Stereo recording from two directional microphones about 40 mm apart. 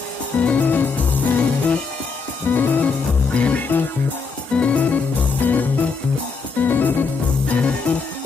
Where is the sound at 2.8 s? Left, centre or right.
Left.